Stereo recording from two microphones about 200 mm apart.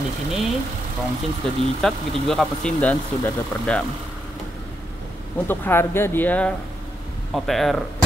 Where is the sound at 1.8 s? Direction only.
Centre (ahead or behind).